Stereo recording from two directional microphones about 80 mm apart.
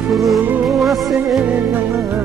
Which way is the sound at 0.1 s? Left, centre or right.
Centre.